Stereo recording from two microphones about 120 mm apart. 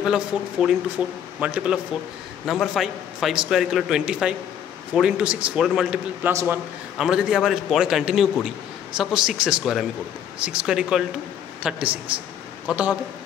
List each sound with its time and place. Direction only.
0.0 s a man's voice: 5° right (ahead or behind)
6.3 s a man's voice: 15° right (ahead or behind)
7.0 s a man's voice: 5° right (ahead or behind)